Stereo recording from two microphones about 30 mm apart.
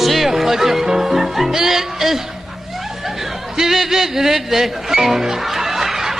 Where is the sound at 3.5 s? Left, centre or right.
Centre.